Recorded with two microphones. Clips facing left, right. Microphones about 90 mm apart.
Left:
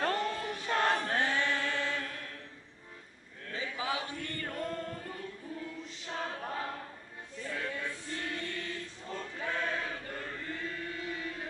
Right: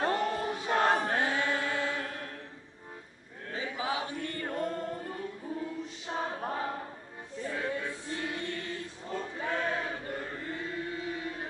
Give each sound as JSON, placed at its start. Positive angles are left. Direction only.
{"t": 0.0, "sound": "choir", "side_deg": -25}
{"t": 1.1, "sound": "chant", "side_deg": -20}
{"t": 3.5, "sound": "chant", "side_deg": -25}
{"t": 7.4, "sound": "music", "side_deg": -20}
{"t": 9.4, "sound": "chant", "side_deg": -25}